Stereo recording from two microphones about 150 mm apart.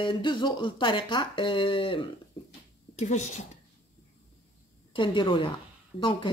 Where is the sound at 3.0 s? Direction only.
50° left (ahead or behind).